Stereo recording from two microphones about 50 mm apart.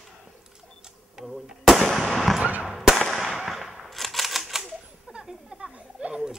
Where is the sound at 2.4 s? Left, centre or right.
Right.